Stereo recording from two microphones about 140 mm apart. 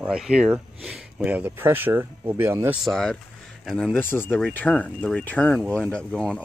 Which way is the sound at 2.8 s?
Centre (ahead or behind).